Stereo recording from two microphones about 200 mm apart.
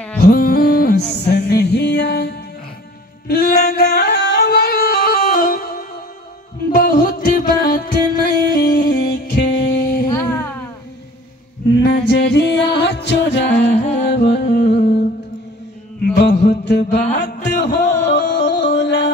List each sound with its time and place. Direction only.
0.2 s music: 50° left (ahead or behind)
9.4 s music: 60° left (ahead or behind)
10.0 s a sound: 10° left (ahead or behind)
11.8 s music: 55° left (ahead or behind)